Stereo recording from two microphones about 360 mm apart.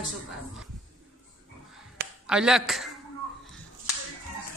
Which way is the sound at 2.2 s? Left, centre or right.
Centre.